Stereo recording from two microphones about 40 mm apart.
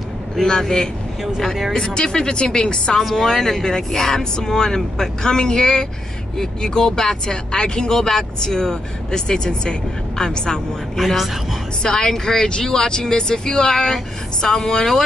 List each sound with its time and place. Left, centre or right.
0.4 s speech: centre
2.0 s speech: centre
11.0 s a woman's voice: centre
11.8 s speech: centre